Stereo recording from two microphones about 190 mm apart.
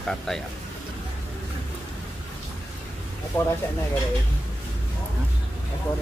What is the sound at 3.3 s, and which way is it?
Speech, 15° left (ahead or behind).